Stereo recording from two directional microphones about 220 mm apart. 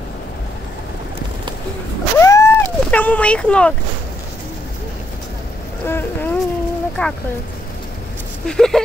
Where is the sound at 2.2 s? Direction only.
15° left (ahead or behind).